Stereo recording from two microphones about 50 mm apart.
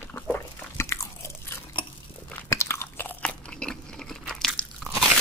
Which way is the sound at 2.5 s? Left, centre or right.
Left.